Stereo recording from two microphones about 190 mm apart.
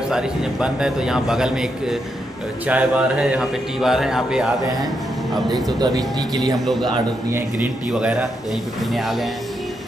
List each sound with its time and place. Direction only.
0.1 s a man's voice: 5° right (ahead or behind)
5.7 s speech: 20° right (ahead or behind)
6.6 s a man's voice: centre (ahead or behind)